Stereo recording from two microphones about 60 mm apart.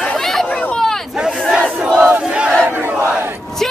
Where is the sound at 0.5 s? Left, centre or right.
Left.